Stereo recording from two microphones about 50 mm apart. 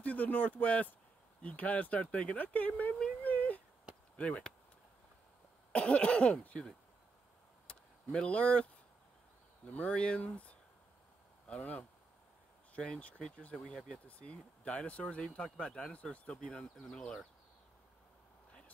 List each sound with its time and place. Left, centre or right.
0.0 s speech: left
5.7 s speech: left
7.6 s a sound: left
9.7 s speech: left
16.3 s speech: centre